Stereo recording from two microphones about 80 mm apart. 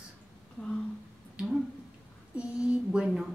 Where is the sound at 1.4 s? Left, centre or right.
Centre.